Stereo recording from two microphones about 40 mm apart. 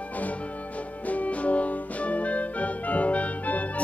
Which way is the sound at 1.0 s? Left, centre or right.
Left.